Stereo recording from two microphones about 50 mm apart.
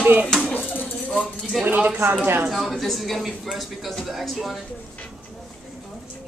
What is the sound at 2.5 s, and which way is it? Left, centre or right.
Speech, centre.